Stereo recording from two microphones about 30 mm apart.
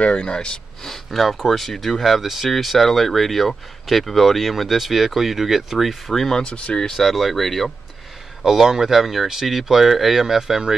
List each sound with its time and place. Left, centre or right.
0.2 s speech: left
0.8 s speech: centre
2.2 s speech: centre
6.0 s speech: centre
6.4 s speech: left
6.9 s speech: centre
8.5 s speech: centre